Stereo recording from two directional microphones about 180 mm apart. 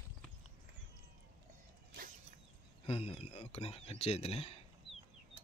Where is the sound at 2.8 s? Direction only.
35° left (ahead or behind).